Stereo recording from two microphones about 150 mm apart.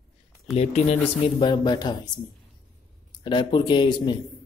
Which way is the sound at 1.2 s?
30° left (ahead or behind).